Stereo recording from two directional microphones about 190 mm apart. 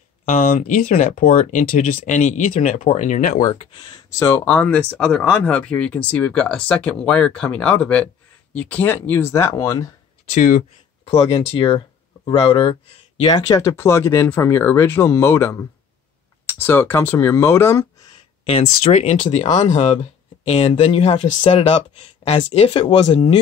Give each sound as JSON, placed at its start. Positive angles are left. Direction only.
{"t": 0.2, "sound": "speech", "side_deg": 45}
{"t": 3.5, "sound": "speech", "side_deg": 25}
{"t": 4.5, "sound": "speech", "side_deg": 10}
{"t": 10.2, "sound": "speech", "side_deg": 40}
{"t": 16.6, "sound": "speech", "side_deg": 10}
{"t": 18.4, "sound": "speech", "side_deg": 30}